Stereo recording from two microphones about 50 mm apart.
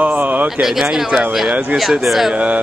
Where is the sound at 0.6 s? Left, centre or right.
Centre.